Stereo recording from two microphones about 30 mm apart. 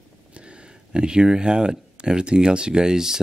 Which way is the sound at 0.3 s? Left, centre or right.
Right.